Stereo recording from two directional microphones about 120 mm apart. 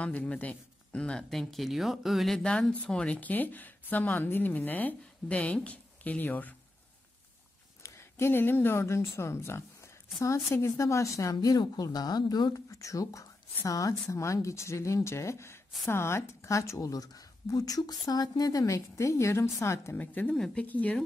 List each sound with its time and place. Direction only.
0.0 s speech: 10° left (ahead or behind)
7.8 s speech: 25° left (ahead or behind)